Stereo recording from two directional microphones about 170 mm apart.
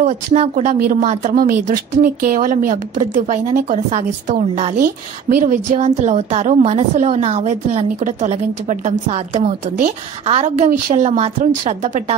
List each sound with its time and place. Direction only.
0.0 s a woman's voice: 40° right (ahead or behind)